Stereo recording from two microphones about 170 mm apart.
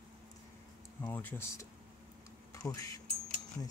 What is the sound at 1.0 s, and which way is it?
Speech, 10° left (ahead or behind).